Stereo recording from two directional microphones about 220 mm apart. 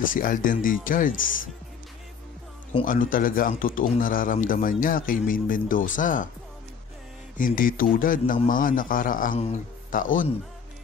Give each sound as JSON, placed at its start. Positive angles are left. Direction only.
{"t": 0.0, "sound": "speech", "side_deg": 40}
{"t": 2.8, "sound": "speech", "side_deg": 40}
{"t": 7.3, "sound": "speech", "side_deg": 40}